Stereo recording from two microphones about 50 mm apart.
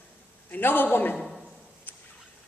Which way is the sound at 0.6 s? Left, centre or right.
Left.